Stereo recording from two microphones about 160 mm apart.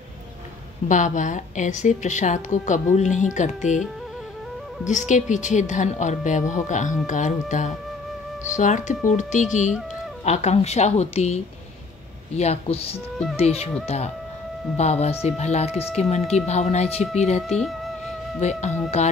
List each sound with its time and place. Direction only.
0.8 s a woman's voice: 50° left (ahead or behind)
4.8 s a woman's voice: 50° left (ahead or behind)
17.6 s music: centre (ahead or behind)
19.0 s a woman's voice: 45° left (ahead or behind)